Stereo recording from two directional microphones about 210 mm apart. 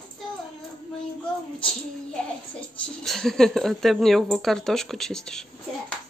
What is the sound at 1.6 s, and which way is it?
A child's voice, 5° left (ahead or behind).